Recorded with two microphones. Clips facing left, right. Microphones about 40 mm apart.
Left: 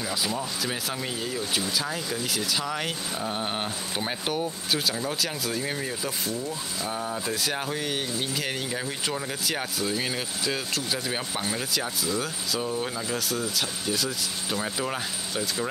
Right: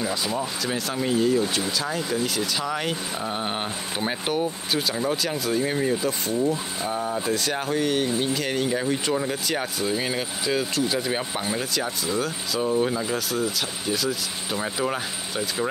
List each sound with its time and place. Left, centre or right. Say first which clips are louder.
0.0 s speech: right 3 dB; centre
6.4 s speech: right 7 dB; right
6.9 s speech: right 5 dB; centre
13.0 s speech: right 4 dB; centre